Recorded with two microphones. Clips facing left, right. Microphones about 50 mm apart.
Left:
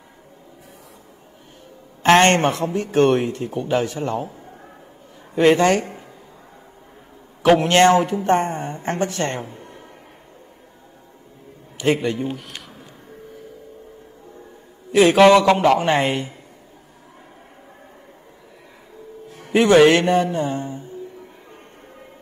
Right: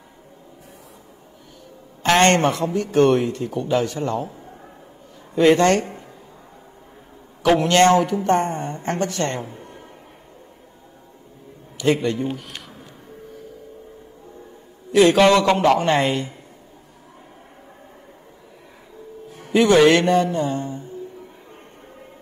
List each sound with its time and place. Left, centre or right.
2.0 s a man's voice: left
4.0 s a man's voice: centre
4.3 s a sound: centre
5.3 s a man's voice: centre
5.6 s a man's voice: centre
7.6 s a man's voice: left
9.4 s speech: centre
12.0 s speech: centre
14.9 s a man's voice: centre
19.3 s music: left
19.9 s a man's voice: left
20.3 s mantra: left